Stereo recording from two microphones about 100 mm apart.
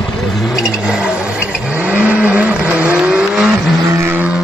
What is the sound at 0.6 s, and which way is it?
Vehicle, 10° right (ahead or behind).